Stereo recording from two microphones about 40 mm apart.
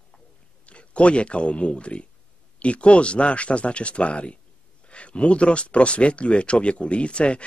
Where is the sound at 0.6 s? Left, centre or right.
Left.